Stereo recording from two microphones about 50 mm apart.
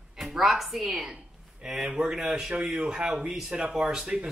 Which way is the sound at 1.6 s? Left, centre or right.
Centre.